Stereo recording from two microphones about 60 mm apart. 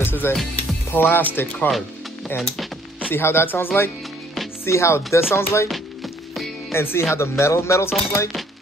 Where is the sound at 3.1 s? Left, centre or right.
Left.